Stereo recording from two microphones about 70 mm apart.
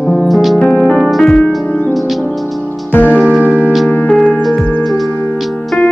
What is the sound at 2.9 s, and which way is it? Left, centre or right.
Music, left.